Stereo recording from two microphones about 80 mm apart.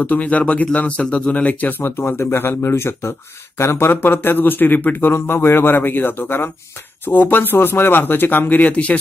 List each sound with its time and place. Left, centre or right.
0.0 s speech: centre